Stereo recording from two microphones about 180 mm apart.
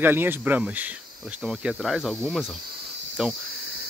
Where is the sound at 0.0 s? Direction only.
10° right (ahead or behind).